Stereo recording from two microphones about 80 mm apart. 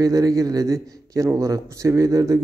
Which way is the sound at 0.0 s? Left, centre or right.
Right.